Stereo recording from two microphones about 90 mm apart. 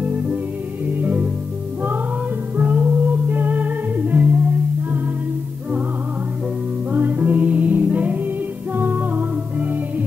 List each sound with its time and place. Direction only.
0.0 s music: 15° right (ahead or behind)
2.5 s music: 15° right (ahead or behind)
6.9 s music: 20° right (ahead or behind)